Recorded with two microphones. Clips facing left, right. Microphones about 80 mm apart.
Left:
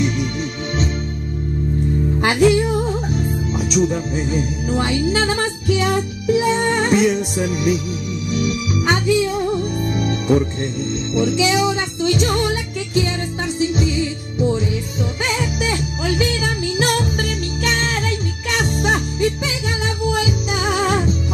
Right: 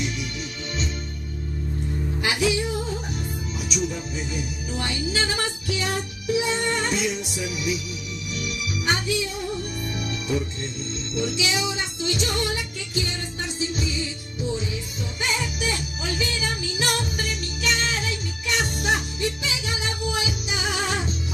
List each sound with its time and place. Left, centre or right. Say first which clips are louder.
2.1 s music: left 9 dB; left
15.2 s music: left 4 dB; left